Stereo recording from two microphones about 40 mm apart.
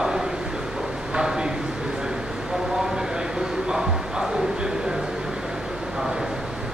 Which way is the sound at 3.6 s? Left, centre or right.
Centre.